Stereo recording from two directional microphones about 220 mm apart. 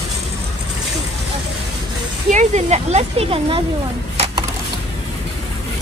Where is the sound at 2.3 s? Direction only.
30° right (ahead or behind).